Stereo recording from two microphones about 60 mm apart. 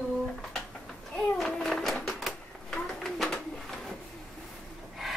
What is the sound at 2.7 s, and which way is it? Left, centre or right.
Bird, centre.